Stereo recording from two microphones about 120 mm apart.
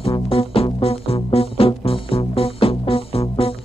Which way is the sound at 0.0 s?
50° left (ahead or behind).